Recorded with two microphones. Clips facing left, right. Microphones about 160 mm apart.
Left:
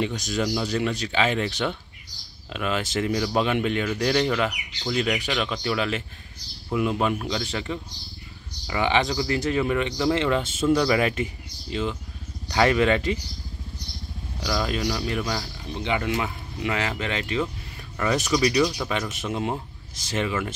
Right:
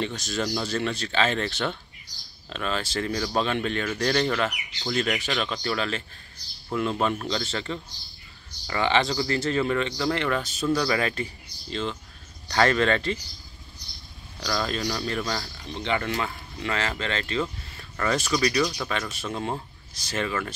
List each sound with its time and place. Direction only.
0.0 s speech: 15° left (ahead or behind)
14.4 s speech: 10° left (ahead or behind)